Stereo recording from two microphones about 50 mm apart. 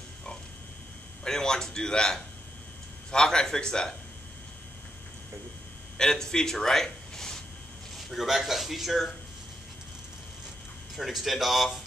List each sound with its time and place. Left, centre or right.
1.2 s speech: centre
5.9 s a man's voice: centre
8.1 s a man's voice: centre
11.0 s a man's voice: centre